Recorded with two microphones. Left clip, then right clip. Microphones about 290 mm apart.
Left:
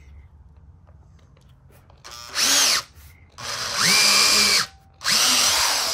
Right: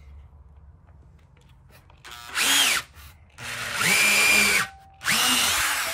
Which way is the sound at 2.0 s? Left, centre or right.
Left.